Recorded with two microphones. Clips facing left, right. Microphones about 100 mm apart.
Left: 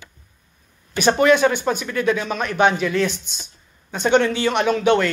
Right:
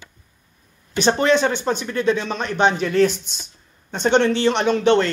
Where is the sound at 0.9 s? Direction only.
30° right (ahead or behind).